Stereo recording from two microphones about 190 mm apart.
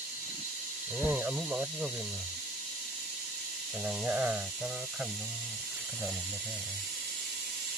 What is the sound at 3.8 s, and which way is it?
Speech, 5° right (ahead or behind).